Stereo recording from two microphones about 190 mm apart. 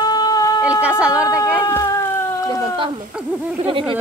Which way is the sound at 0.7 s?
5° right (ahead or behind).